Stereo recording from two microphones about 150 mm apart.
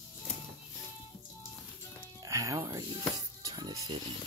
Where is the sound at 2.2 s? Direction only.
20° right (ahead or behind).